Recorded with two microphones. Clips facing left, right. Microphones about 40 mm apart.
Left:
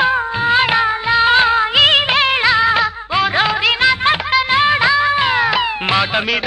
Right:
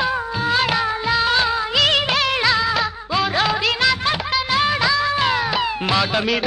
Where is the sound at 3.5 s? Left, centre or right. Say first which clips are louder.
Left 4 dB; centre.